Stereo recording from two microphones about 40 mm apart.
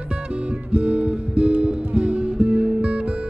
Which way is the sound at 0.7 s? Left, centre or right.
Right.